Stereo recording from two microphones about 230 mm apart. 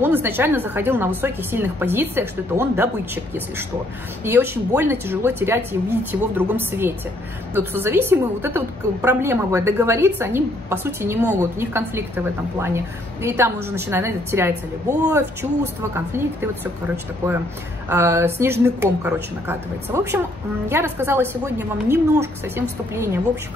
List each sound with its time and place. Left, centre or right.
0.0 s a woman's voice: centre
4.2 s a woman's voice: centre